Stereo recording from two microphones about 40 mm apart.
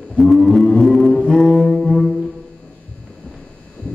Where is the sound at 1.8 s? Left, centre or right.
Centre.